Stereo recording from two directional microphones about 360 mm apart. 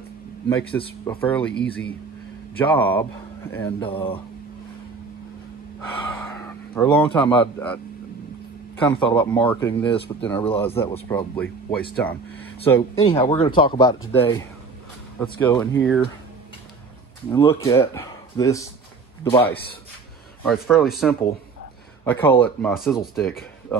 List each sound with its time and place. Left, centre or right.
0.5 s speech: centre
1.5 s speech: left
2.5 s speech: centre
6.7 s speech: centre
8.8 s speech: centre
17.3 s speech: centre
23.7 s a sound: centre